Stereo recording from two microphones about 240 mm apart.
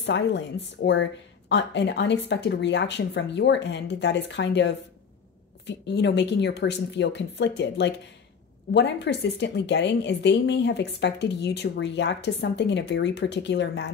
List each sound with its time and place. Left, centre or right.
0.0 s a woman's voice: left